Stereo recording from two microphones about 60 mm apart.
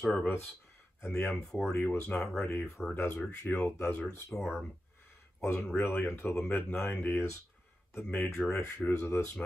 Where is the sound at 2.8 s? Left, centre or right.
Left.